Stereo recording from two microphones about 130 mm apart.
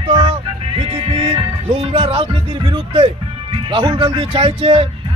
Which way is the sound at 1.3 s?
45° right (ahead or behind).